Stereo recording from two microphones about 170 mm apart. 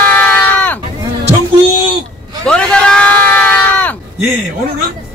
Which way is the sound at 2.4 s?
5° left (ahead or behind).